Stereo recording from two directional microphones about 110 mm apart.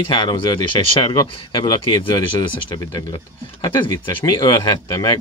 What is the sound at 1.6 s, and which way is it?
Speech, 40° left (ahead or behind).